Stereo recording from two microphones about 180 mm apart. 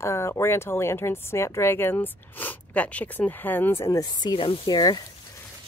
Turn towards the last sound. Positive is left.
turn(degrees=25)  # may be behind; listen again after turning